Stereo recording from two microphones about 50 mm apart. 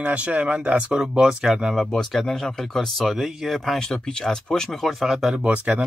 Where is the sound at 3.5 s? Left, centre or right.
Centre.